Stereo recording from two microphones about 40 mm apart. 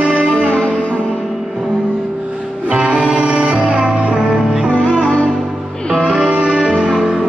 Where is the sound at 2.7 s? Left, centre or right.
Right.